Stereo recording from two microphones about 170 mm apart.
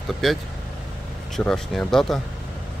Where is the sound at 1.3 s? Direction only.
Centre (ahead or behind).